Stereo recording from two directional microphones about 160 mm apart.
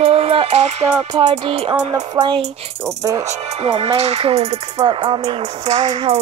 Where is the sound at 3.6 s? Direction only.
40° right (ahead or behind).